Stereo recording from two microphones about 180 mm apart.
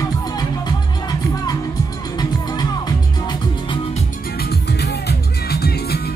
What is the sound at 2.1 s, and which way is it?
Music, 20° left (ahead or behind).